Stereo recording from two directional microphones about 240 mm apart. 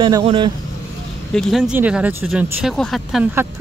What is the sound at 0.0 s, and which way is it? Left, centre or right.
Speech, right.